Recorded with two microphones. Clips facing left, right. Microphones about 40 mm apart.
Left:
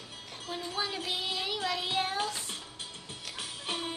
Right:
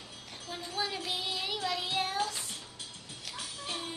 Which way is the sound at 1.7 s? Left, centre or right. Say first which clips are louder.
Left 1 dB; centre.